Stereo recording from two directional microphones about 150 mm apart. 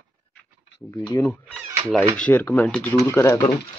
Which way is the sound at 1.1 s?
15° left (ahead or behind).